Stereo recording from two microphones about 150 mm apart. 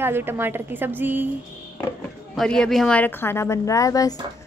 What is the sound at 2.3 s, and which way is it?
A woman's voice, 5° left (ahead or behind).